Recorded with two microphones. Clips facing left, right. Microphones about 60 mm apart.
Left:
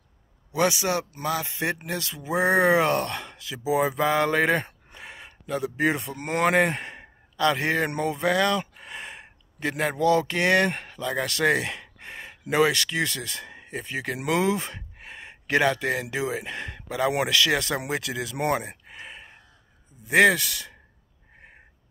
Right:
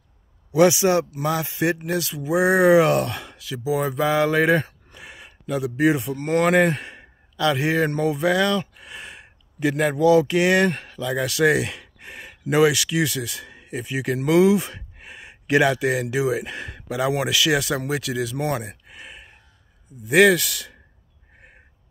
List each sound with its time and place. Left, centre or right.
0.5 s a man's voice: centre
1.1 s speech: centre
18.9 s a sound: centre
20.1 s speech: centre